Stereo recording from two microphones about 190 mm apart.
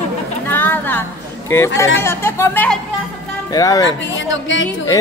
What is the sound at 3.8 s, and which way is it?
Speech, 75° left (ahead or behind).